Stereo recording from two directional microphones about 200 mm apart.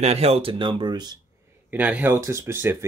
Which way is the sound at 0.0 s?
30° right (ahead or behind).